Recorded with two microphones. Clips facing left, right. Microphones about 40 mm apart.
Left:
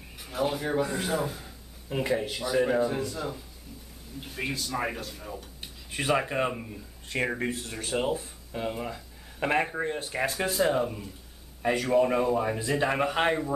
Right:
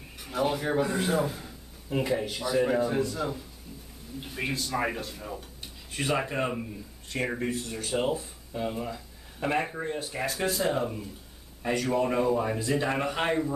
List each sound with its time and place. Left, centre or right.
0.2 s a man's voice: centre
5.9 s a man's voice: centre
7.1 s speech: left
7.9 s a man's voice: centre
8.2 s speech: centre
10.5 s a man's voice: centre